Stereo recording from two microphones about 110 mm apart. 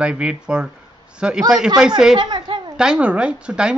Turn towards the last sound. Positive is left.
turn(degrees=-10)  # may be behind; listen again after turning